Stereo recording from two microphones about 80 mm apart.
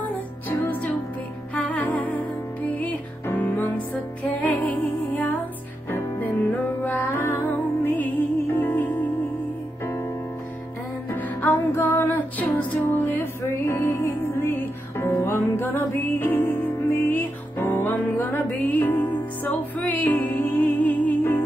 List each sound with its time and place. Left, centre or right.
0.0 s music: left
11.1 s music: left